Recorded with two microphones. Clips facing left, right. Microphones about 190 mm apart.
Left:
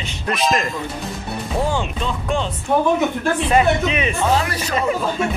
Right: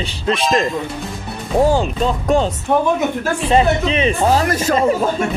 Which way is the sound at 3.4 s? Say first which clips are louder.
Right 3 dB; 30° right (ahead or behind).